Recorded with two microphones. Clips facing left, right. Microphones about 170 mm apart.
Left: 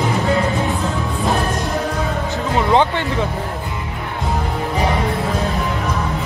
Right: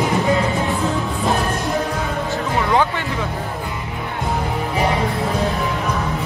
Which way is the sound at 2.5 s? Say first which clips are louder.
Left 3 dB; 25° left (ahead or behind).